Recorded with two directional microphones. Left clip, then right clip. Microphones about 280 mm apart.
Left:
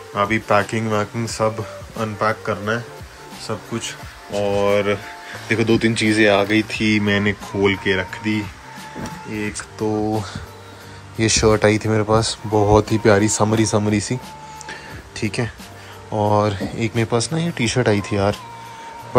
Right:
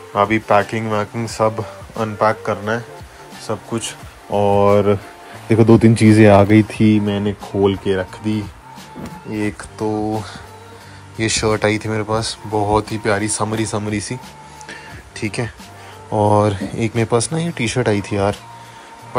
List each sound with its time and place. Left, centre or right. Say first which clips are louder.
0.1 s speech: right 3 dB; centre
4.6 s speech: right 3 dB; centre
7.1 s speech: left 2 dB; centre
9.8 s speech: even; centre
11.1 s speech: left 2 dB; centre
14.7 s music: right 2 dB; centre
16.1 s speech: right 3 dB; centre